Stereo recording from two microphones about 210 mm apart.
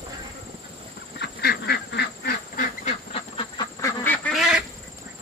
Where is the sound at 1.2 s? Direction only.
50° left (ahead or behind).